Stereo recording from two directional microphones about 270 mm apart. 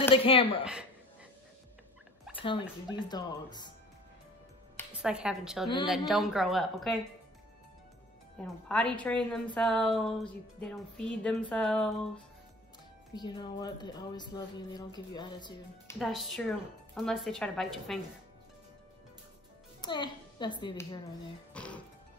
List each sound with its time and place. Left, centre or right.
0.1 s a woman's voice: centre
2.3 s a sound: centre
2.9 s speech: centre
4.9 s speech: centre
8.4 s speech: centre
13.1 s speech: centre
16.0 s speech: centre
19.8 s a child's voice: centre
21.5 s music: centre